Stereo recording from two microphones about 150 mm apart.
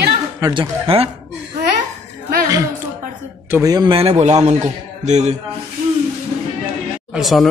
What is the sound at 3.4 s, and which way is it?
Speech, 20° right (ahead or behind).